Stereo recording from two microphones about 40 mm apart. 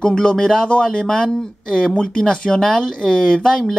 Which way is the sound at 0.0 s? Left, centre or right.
Left.